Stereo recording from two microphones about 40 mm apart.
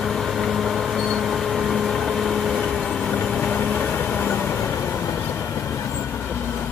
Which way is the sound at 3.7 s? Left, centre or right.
Left.